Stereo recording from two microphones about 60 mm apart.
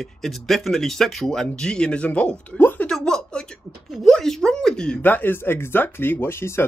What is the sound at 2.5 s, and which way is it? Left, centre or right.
Speech, left.